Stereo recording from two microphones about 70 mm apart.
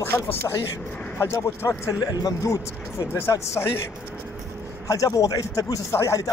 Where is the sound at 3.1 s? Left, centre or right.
Left.